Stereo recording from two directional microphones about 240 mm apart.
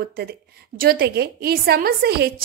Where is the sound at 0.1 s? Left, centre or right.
Right.